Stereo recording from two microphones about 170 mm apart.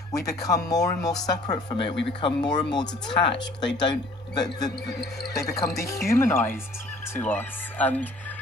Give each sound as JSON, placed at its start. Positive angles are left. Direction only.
{"t": 0.1, "sound": "speech", "side_deg": 20}